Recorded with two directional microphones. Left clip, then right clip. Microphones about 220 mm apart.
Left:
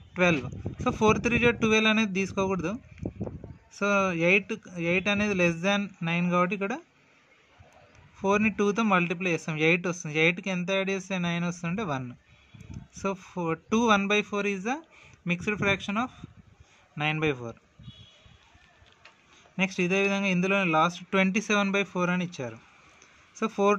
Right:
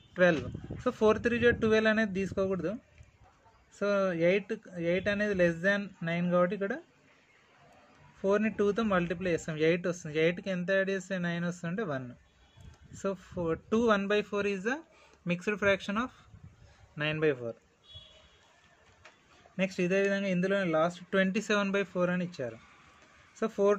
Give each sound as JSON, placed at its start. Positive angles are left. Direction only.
{"t": 0.1, "sound": "a man's voice", "side_deg": 25}
{"t": 8.2, "sound": "a man's voice", "side_deg": 30}
{"t": 19.5, "sound": "a man's voice", "side_deg": 25}